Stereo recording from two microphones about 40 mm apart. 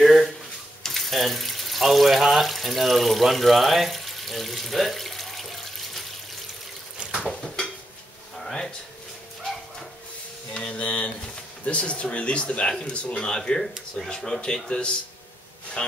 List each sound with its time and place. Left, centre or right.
0.0 s a sound: centre
0.8 s speech: centre
7.2 s a sound: centre
10.5 s speech: left
13.2 s speech: centre
15.8 s speech: centre